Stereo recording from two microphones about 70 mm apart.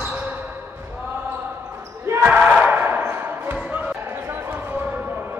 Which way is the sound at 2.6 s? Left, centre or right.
Right.